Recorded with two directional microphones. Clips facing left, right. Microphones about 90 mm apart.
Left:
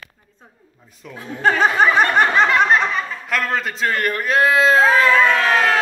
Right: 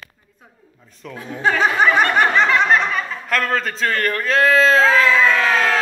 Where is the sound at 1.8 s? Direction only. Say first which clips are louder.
Even; 30° left (ahead or behind).